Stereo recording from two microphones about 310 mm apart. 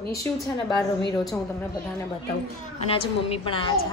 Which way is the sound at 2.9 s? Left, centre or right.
Centre.